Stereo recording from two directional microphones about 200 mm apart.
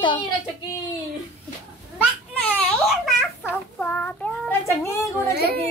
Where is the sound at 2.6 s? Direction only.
5° left (ahead or behind).